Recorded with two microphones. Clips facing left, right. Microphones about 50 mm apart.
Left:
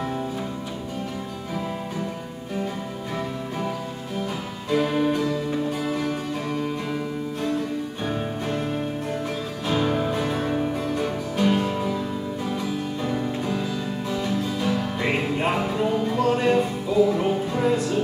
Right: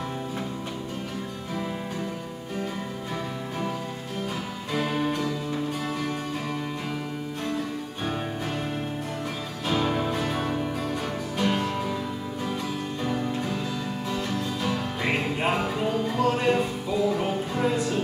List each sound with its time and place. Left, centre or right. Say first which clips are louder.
4.6 s music: left 5 dB; centre
9.7 s music: left 2 dB; centre
13.0 s music: even; centre